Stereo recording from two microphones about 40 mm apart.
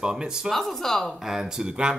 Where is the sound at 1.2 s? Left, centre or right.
Centre.